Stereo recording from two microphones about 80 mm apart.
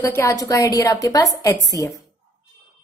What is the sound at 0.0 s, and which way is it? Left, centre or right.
A woman's voice, left.